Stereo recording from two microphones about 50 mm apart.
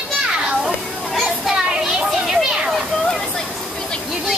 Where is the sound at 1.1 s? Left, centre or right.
Centre.